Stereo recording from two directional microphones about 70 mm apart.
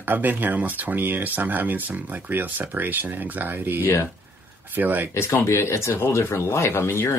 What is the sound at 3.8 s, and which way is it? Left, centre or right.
Speech, left.